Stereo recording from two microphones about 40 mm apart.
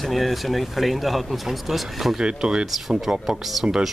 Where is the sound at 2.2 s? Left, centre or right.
Right.